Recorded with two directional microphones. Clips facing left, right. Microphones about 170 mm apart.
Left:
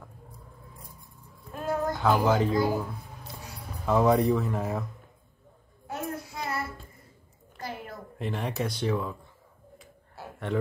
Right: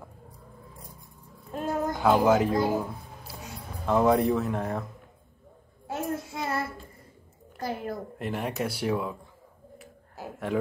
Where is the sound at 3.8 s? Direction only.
Centre (ahead or behind).